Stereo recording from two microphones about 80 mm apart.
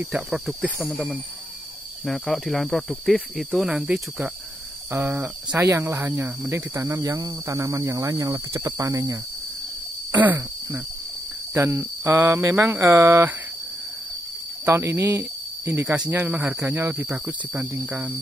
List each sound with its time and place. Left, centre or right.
0.1 s speech: centre
2.0 s cricket: centre
3.7 s speech: centre
4.9 s cricket: right
5.6 s cricket: right
7.0 s speech: right
10.1 s cricket: right
11.5 s cricket: right
14.6 s speech: right
16.3 s speech: centre
16.6 s cricket: right